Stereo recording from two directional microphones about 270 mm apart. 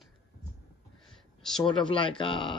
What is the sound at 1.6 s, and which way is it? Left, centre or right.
Speech, centre.